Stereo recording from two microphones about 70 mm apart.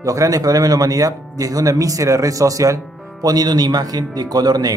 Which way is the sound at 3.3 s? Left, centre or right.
Right.